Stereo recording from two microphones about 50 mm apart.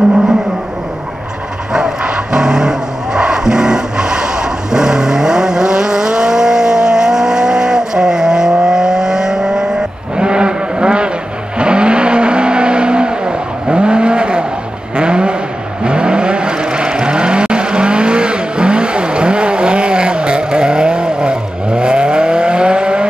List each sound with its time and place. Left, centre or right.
1.7 s vehicle: centre